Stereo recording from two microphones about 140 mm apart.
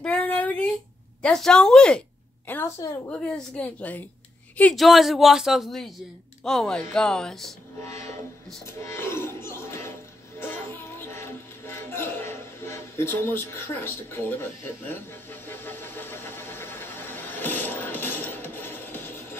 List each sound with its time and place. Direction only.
0.0 s a sound: 10° left (ahead or behind)
1.2 s a woman's voice: 5° left (ahead or behind)
4.7 s speech: centre (ahead or behind)
7.8 s train: 20° left (ahead or behind)
8.6 s music: 20° left (ahead or behind)